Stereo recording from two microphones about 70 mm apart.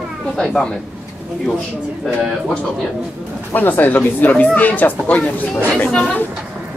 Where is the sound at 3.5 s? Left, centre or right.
Left.